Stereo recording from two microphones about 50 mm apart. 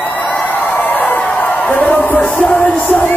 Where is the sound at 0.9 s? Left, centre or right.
Left.